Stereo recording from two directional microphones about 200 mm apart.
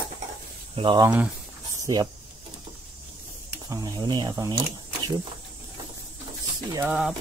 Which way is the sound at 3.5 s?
15° right (ahead or behind).